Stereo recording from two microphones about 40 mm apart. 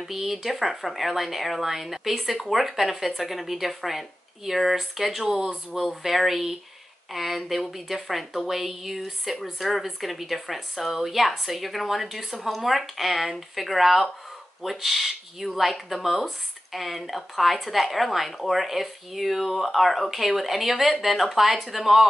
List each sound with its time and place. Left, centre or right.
0.0 s speech: centre